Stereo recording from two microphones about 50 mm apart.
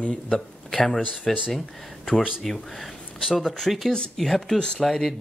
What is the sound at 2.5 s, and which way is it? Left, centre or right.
Speech, centre.